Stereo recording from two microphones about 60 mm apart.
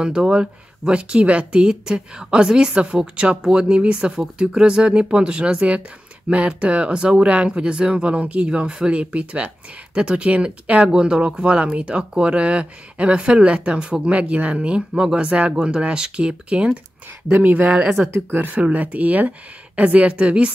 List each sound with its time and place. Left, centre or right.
0.0 s speech: centre
17.3 s speech: right